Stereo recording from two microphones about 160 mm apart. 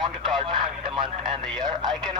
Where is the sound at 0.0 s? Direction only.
30° right (ahead or behind).